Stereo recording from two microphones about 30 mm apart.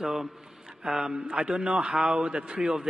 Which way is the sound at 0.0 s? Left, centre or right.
Centre.